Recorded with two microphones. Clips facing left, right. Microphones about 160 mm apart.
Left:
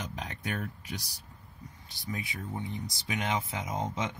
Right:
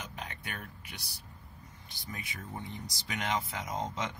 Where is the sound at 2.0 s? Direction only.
15° left (ahead or behind).